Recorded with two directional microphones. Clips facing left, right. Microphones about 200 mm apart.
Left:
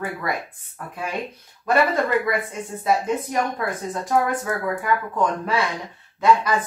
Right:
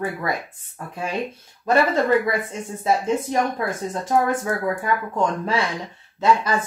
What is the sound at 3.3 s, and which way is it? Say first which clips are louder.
Speech: right 2 dB; 25° right (ahead or behind).